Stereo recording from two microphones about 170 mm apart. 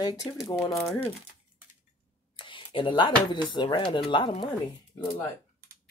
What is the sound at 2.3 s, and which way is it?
Speech, 30° left (ahead or behind).